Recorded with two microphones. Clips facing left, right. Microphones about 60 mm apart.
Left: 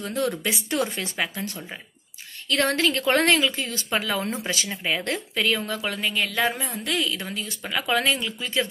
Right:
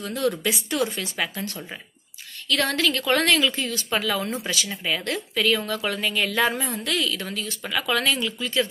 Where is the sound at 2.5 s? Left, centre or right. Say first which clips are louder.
Left 1 dB; left.